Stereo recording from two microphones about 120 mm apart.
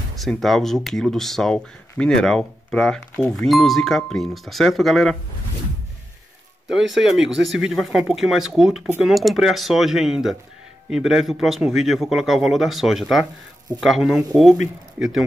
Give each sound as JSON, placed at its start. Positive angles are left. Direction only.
{"t": 0.1, "sound": "speech", "side_deg": 0}
{"t": 6.7, "sound": "speech", "side_deg": -5}